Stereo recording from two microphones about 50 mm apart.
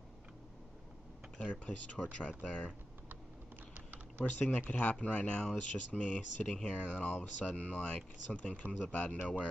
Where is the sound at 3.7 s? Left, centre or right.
Right.